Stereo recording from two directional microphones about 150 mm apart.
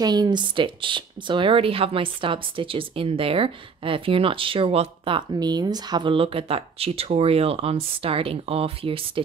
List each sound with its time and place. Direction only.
0.0 s speech: 25° right (ahead or behind)